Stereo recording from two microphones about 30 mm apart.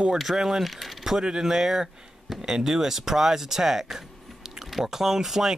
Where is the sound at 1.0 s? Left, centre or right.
Centre.